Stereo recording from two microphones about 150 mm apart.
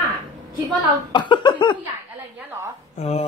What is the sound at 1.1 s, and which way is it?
Speech, 30° left (ahead or behind).